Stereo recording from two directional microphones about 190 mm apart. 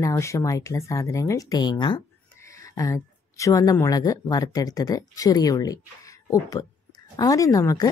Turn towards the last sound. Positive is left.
turn(degrees=15)  # may be behind; listen again after turning